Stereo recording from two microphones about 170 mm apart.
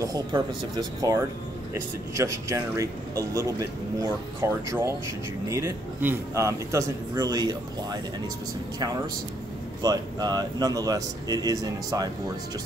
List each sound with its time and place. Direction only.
0.0 s a man's voice: 25° right (ahead or behind)
9.8 s a man's voice: 25° right (ahead or behind)